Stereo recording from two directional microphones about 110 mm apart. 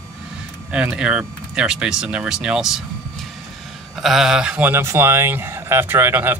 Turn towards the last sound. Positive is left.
turn(degrees=-20)  # may be behind; listen again after turning